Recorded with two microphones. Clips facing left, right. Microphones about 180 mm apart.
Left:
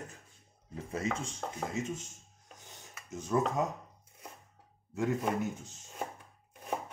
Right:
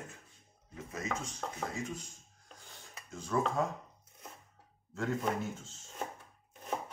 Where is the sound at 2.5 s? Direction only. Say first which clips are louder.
Left 1 dB; 20° left (ahead or behind).